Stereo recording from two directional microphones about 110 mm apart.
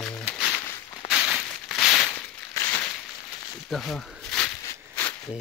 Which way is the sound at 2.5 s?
25° left (ahead or behind).